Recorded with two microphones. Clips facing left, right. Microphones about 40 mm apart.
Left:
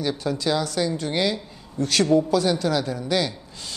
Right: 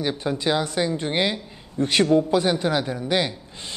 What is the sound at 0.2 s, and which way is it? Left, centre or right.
Speech, right.